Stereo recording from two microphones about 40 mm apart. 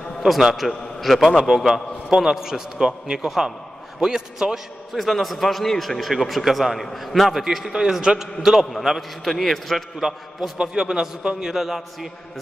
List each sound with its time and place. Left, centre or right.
0.2 s a man's voice: centre
4.9 s a man's voice: centre
7.7 s a man's voice: centre
9.9 s a man's voice: centre